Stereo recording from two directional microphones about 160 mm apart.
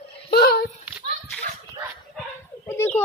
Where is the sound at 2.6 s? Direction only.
10° left (ahead or behind).